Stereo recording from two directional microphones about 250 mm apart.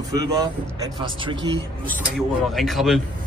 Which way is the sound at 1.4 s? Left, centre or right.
Right.